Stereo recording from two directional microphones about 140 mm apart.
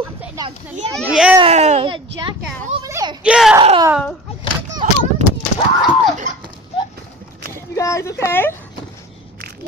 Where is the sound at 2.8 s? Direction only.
25° right (ahead or behind).